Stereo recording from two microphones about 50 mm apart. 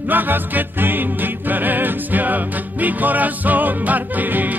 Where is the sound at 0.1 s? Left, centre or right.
Right.